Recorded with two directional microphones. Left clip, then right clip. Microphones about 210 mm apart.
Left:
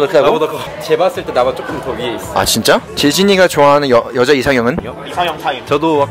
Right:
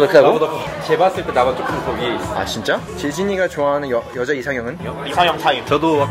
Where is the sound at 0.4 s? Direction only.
45° left (ahead or behind).